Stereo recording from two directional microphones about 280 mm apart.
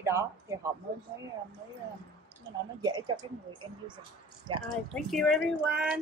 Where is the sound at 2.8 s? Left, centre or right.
Centre.